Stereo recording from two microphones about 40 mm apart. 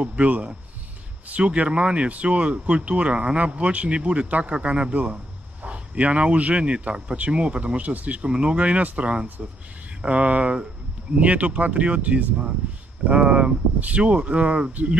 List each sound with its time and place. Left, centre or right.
0.0 s speech: right
8.3 s speech: right
14.7 s speech: right